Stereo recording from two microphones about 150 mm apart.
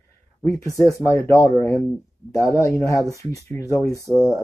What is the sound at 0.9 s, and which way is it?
Speech, 20° left (ahead or behind).